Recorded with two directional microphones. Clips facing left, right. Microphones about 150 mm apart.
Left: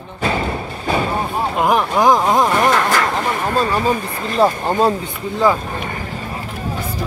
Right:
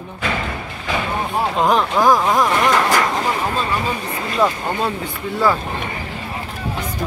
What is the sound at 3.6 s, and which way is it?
Speech, 40° left (ahead or behind).